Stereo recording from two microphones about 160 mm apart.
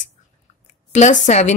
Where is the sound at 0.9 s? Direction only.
45° left (ahead or behind).